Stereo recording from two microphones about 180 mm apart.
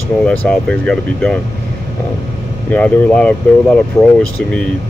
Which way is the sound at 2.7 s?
5° left (ahead or behind).